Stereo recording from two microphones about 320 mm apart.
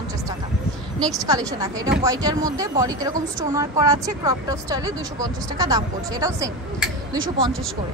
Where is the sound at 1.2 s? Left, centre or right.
Centre.